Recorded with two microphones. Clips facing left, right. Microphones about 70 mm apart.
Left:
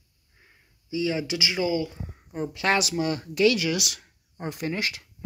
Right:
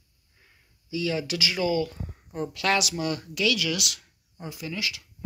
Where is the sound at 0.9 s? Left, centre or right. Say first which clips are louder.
Left 1 dB; left.